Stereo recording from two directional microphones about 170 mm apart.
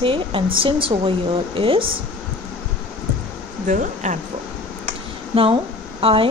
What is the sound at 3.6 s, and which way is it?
Speech, 45° right (ahead or behind).